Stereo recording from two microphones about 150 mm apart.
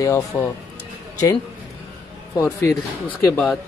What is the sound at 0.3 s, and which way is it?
Speech, 25° left (ahead or behind).